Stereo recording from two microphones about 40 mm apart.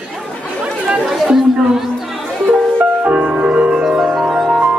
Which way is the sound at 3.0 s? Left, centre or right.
Right.